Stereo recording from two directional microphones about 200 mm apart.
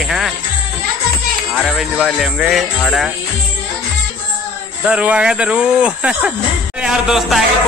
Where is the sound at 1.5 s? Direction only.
5° left (ahead or behind).